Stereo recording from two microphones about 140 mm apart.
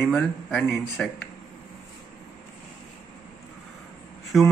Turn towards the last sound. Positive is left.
turn(degrees=-5)  # may be behind; listen again after turning